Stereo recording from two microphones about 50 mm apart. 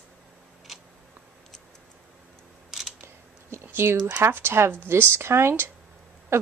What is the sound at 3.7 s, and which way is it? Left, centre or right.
Speech, right.